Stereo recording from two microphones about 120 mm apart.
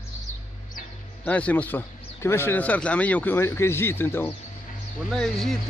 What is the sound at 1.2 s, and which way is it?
Speech, 10° left (ahead or behind).